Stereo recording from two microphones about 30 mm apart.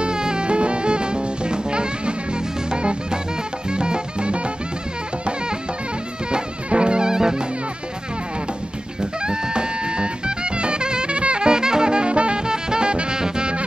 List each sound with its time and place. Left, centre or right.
0.0 s music: right
6.3 s music: right
9.2 s music: right
12.4 s saxophone: right
13.2 s music: right